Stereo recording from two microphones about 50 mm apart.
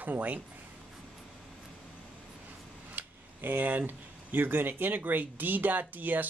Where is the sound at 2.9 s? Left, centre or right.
Right.